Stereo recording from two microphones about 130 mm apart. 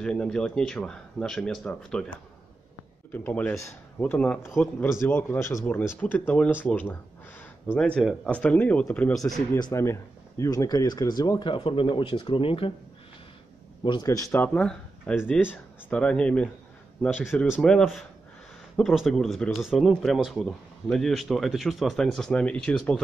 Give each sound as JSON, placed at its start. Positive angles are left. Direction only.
{"t": 0.0, "sound": "speech", "side_deg": 5}
{"t": 3.1, "sound": "speech", "side_deg": 15}
{"t": 9.6, "sound": "speech", "side_deg": 25}
{"t": 14.0, "sound": "speech", "side_deg": 20}
{"t": 17.5, "sound": "speech", "side_deg": 5}